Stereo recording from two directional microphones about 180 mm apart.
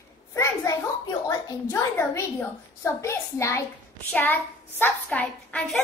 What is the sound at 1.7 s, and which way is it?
A child's voice, 15° left (ahead or behind).